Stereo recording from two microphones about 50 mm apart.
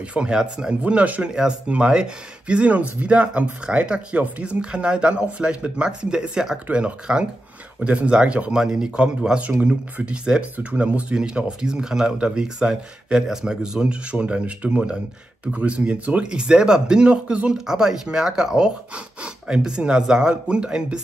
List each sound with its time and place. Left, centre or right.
0.1 s speech: centre
14.1 s speech: right